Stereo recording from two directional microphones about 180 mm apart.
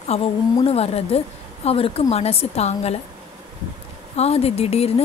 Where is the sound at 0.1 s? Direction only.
35° left (ahead or behind).